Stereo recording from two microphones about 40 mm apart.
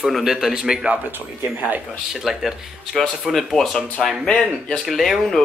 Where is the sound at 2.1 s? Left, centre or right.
Centre.